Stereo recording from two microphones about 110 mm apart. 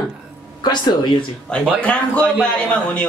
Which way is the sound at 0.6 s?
45° left (ahead or behind).